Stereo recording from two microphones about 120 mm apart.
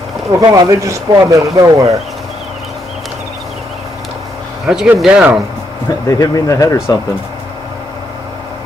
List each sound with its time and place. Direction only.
0.4 s speech: 30° right (ahead or behind)
4.6 s speech: 5° right (ahead or behind)
6.0 s speech: 30° left (ahead or behind)